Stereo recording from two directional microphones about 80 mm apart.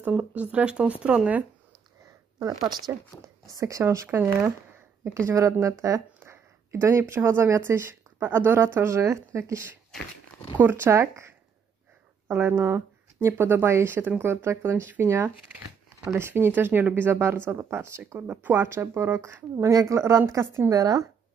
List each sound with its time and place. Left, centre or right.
0.0 s speech: centre
2.3 s speech: right
6.1 s a sound: right
7.2 s speech: right
12.3 s speech: right
20.7 s speech: right